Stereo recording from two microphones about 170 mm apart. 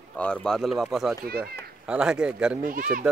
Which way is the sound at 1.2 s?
65° right (ahead or behind).